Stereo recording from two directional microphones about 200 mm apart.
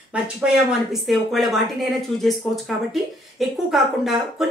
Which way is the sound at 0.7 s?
Centre (ahead or behind).